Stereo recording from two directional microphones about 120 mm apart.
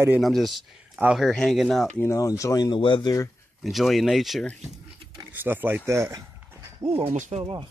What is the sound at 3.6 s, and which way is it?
Speech, centre (ahead or behind).